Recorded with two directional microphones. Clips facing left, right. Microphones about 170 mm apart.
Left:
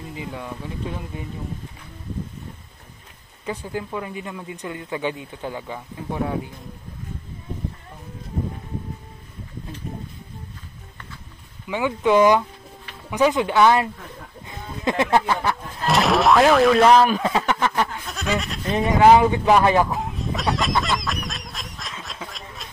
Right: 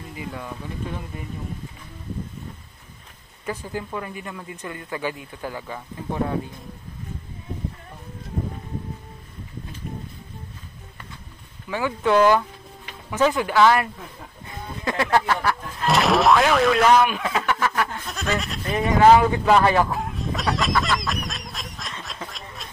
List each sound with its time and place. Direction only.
0.1 s speech: 20° left (ahead or behind)
3.4 s speech: 10° left (ahead or behind)
11.7 s speech: 15° left (ahead or behind)
14.5 s music: 20° left (ahead or behind)
15.9 s boing: centre (ahead or behind)
16.8 s speech: 30° left (ahead or behind)
18.0 s speech: centre (ahead or behind)
19.0 s speech: 15° left (ahead or behind)
20.2 s a sound: centre (ahead or behind)
20.8 s honk: centre (ahead or behind)